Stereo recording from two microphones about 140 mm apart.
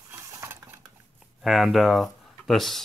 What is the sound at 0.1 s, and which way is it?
Dishes, 20° right (ahead or behind).